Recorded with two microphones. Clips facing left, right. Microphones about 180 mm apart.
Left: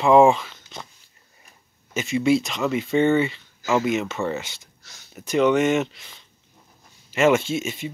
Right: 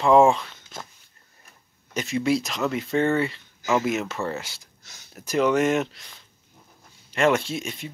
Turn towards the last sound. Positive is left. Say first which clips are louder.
# left 5 dB
turn(degrees=0)  # may be behind; listen again after turning